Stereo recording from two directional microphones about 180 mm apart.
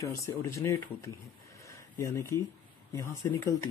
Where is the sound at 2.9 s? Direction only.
15° left (ahead or behind).